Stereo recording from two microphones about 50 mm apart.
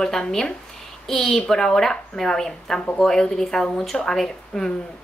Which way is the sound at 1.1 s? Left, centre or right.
Centre.